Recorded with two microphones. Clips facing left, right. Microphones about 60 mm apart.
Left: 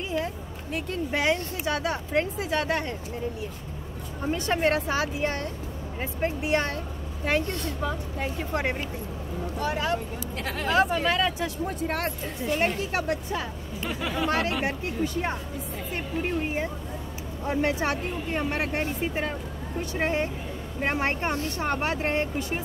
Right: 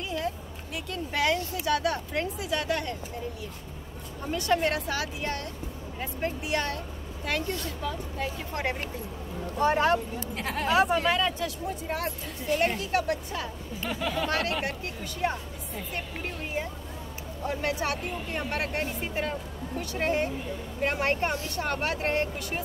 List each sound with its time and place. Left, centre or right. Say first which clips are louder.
0.7 s speech: left 2 dB; left
4.3 s speech: left 2 dB; left
9.6 s speech: right 5 dB; right
10.3 s speech: left 1 dB; centre
11.6 s speech: left 5 dB; left
12.4 s speech: even; left
13.8 s speech: even; centre
14.2 s speech: left 5 dB; left
15.9 s speech: left 8 dB; left